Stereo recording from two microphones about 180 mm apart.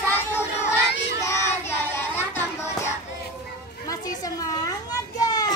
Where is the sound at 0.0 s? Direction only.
10° left (ahead or behind).